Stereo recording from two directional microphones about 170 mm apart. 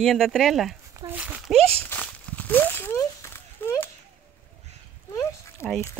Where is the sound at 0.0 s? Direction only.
Centre (ahead or behind).